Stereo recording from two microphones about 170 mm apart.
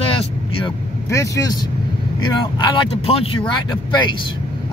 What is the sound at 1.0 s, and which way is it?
Speech, 20° left (ahead or behind).